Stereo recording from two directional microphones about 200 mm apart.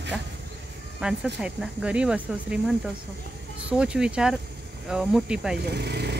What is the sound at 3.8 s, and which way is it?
Speech, 5° right (ahead or behind).